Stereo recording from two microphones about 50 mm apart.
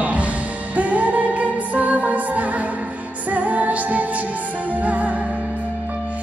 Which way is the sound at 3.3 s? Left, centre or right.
Right.